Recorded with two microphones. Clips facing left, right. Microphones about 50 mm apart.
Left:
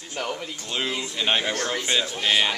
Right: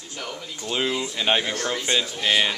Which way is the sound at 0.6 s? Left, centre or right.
Centre.